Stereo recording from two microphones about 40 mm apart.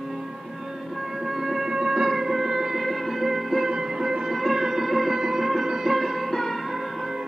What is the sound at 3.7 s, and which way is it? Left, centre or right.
Music, centre.